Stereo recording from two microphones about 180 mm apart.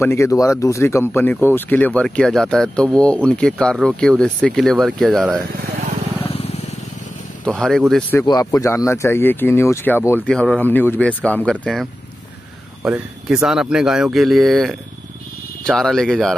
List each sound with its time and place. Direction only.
0.0 s speech: 15° left (ahead or behind)
6.2 s vehicle: 30° left (ahead or behind)
7.9 s speech: 10° left (ahead or behind)